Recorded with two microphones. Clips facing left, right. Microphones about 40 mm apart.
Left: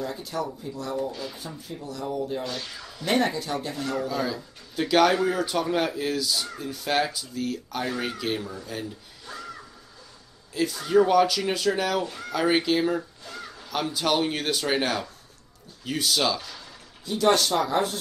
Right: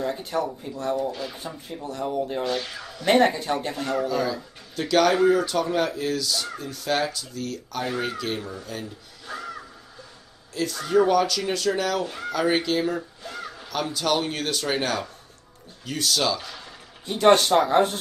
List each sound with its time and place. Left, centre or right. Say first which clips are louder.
0.0 s speech: right 4 dB; right
2.4 s speech: right 6 dB; right
3.1 s speech: right 5 dB; right
4.1 s speech: right 3 dB; centre
5.1 s speech: right 5 dB; centre
5.4 s speech: right 1 dB; centre
9.3 s a sound: right 4 dB; centre
10.5 s speech: even; centre
13.2 s a sound: right 4 dB; centre
13.7 s speech: even; centre
17.0 s speech: right 4 dB; right